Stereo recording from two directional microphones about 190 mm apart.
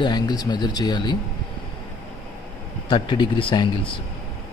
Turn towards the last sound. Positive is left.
turn(degrees=25)  # may be behind; listen again after turning